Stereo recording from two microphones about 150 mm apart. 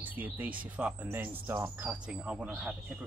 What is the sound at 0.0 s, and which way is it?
Speech, 10° right (ahead or behind).